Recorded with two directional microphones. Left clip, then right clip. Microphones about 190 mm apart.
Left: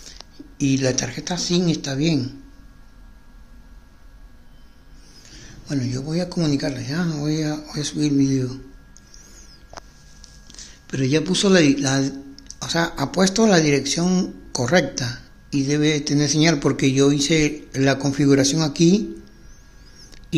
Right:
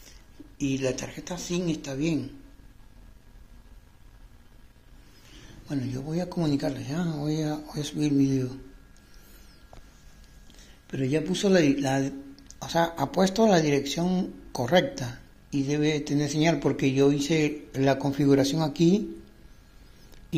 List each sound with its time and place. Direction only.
0.6 s speech: 25° left (ahead or behind)
5.7 s speech: 10° left (ahead or behind)
10.5 s a man's voice: 15° left (ahead or behind)